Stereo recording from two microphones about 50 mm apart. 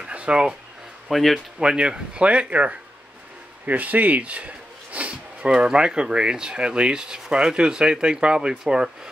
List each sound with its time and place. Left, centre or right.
0.0 s a sound: right
1.0 s speech: centre
1.6 s speech: centre